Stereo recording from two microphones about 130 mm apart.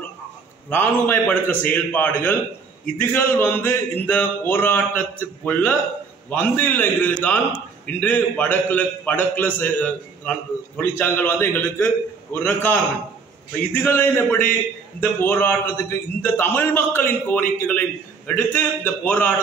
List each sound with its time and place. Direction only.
0.7 s a man's voice: 15° left (ahead or behind)
13.8 s a man's voice: 20° left (ahead or behind)